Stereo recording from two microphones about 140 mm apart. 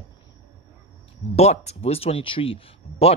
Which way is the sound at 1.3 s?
50° left (ahead or behind).